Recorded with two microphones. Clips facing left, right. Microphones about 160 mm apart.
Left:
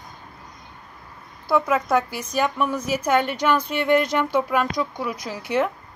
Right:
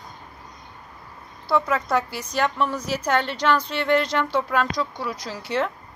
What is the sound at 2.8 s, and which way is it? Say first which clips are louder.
Speech: left 2 dB; 50° left (ahead or behind).